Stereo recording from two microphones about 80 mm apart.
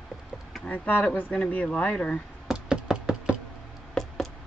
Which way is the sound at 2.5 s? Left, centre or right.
Centre.